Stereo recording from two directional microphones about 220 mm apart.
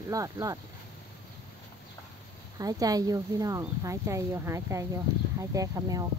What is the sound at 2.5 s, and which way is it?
Speech, 15° right (ahead or behind).